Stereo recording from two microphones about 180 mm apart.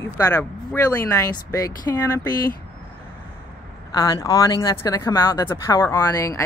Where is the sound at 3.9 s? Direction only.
20° left (ahead or behind).